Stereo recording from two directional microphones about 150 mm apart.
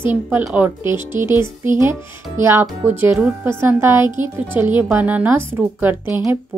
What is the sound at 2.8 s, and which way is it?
A woman's voice, 15° right (ahead or behind).